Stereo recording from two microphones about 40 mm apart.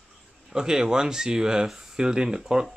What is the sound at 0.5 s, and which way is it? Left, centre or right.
Speech, centre.